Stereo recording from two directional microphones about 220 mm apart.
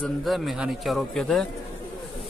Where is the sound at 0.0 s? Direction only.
Centre (ahead or behind).